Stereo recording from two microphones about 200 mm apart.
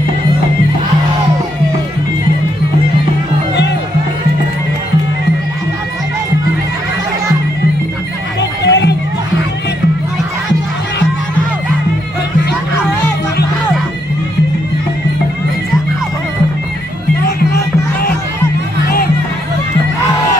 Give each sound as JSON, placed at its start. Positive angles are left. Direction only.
{"t": 8.4, "sound": "music", "side_deg": 60}